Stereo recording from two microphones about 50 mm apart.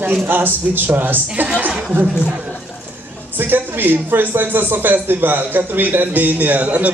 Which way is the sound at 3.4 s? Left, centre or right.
Right.